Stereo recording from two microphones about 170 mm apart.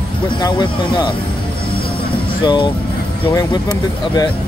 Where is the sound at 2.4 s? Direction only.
25° left (ahead or behind).